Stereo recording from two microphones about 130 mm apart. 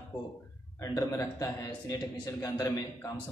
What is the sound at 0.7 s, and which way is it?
A man's voice, 25° left (ahead or behind).